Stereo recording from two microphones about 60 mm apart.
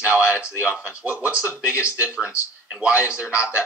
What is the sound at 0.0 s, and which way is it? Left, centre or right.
Speech, right.